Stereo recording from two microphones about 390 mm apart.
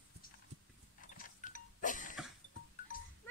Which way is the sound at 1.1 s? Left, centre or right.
Left.